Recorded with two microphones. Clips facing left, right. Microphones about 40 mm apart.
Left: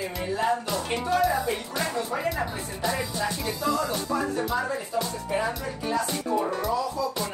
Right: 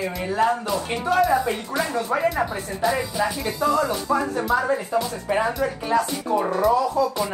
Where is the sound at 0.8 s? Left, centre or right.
Right.